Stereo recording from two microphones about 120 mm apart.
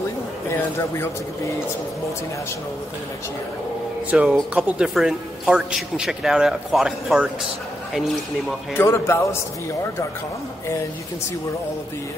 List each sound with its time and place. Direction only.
0.5 s speech: 20° left (ahead or behind)
4.1 s a man's voice: 10° right (ahead or behind)
8.7 s speech: 20° left (ahead or behind)